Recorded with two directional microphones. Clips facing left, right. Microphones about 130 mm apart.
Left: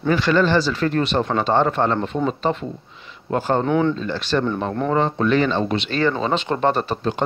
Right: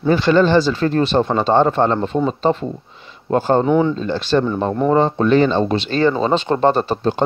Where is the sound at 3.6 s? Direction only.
10° right (ahead or behind).